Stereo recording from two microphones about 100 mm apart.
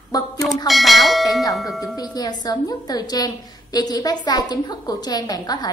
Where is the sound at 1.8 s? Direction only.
40° left (ahead or behind).